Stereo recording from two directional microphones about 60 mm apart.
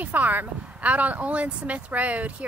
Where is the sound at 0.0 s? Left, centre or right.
Right.